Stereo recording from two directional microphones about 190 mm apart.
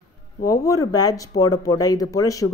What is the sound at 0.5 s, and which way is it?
Speech, 15° left (ahead or behind).